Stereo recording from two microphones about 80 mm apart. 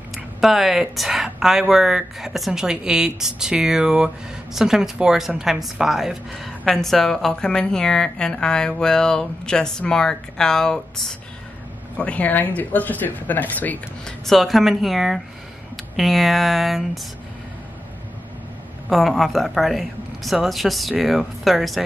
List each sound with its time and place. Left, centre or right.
0.1 s a woman's voice: centre
12.0 s speech: centre
14.0 s speech: centre
18.9 s speech: centre